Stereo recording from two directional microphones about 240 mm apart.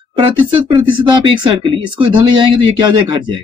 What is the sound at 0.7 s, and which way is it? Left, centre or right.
Speech, centre.